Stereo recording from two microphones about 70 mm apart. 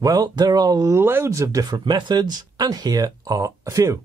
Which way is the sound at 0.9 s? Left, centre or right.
Right.